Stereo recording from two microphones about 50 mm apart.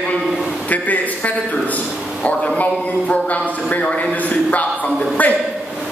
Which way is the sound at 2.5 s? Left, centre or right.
Left.